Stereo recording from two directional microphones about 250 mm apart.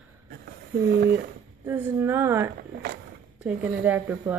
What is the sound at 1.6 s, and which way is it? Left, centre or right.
A woman's voice, centre.